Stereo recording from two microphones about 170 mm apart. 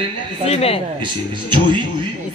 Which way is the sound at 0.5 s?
35° left (ahead or behind).